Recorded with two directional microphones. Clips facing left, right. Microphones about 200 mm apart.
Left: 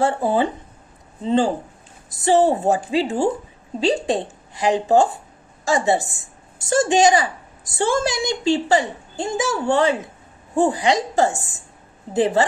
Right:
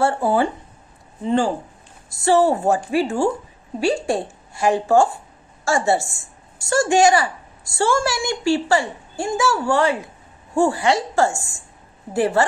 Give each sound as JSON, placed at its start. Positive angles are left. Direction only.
{"t": 0.0, "sound": "a woman's voice", "side_deg": 20}